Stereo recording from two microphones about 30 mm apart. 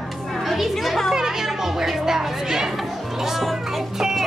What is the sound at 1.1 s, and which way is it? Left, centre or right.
Speech, centre.